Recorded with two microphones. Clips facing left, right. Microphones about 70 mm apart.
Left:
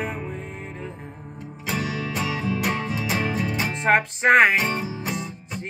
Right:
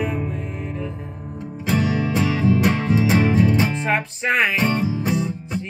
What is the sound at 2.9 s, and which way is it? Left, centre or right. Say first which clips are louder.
Music: right 8 dB; right.